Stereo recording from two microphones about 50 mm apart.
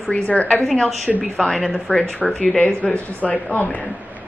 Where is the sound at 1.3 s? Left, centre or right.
Centre; by 3.7 s left.